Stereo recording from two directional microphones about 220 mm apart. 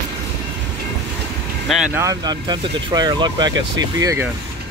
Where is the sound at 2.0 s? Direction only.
15° right (ahead or behind).